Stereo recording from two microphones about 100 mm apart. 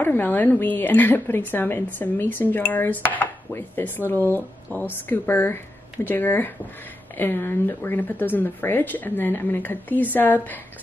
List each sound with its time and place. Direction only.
0.0 s a woman's voice: 20° left (ahead or behind)